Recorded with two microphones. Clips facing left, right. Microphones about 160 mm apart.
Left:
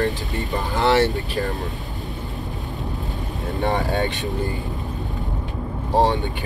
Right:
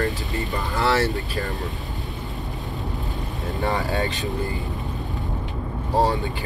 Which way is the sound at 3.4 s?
20° left (ahead or behind).